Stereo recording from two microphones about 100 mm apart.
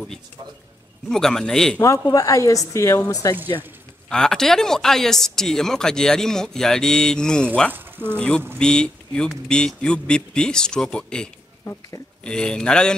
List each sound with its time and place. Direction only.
1.0 s speech: 5° left (ahead or behind)
1.8 s a woman's voice: 30° left (ahead or behind)
4.1 s speech: 5° left (ahead or behind)
7.7 s speech: 20° right (ahead or behind)
8.2 s speech: 10° left (ahead or behind)